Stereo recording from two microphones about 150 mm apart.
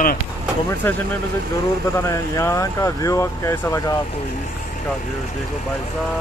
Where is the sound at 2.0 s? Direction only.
20° left (ahead or behind).